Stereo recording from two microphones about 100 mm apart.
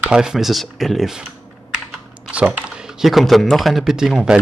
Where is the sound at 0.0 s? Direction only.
5° right (ahead or behind).